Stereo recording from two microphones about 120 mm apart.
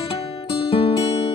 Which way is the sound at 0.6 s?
50° left (ahead or behind).